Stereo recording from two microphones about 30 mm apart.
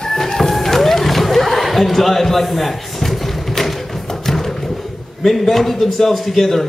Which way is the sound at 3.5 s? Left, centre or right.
Centre.